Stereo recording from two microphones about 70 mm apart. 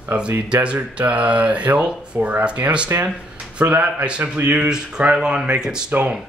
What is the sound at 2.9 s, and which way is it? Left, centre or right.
Speech, right.